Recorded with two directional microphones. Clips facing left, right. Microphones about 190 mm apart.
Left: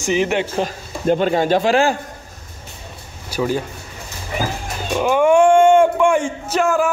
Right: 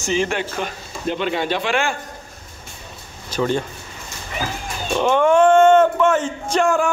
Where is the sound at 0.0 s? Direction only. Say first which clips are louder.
Left 3 dB; 15° left (ahead or behind).